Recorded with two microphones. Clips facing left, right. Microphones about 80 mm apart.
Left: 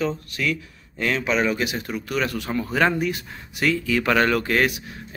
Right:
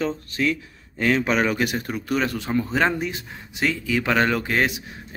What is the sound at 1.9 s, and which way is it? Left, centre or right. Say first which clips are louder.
Speech: right 1 dB; right.